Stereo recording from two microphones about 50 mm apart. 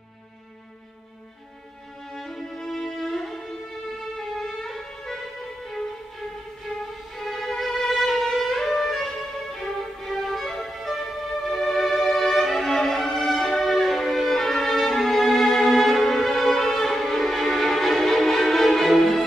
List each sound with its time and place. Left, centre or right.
2.1 s music: centre
4.2 s violin: centre
7.2 s violin: centre
11.4 s music: centre